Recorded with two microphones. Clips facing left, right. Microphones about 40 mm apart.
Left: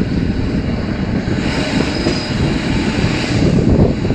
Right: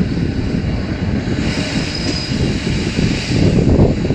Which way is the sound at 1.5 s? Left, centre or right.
Left.